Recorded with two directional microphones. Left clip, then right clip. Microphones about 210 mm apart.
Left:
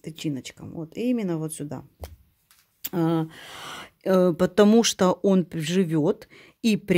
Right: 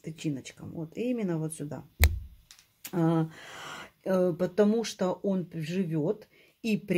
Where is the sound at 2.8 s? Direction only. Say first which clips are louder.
Left 3 dB; 40° left (ahead or behind).